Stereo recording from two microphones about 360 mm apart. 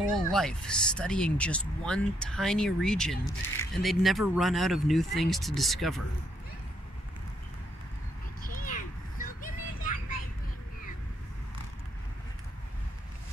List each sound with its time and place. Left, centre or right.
0.1 s speech: centre
8.4 s vehicle: left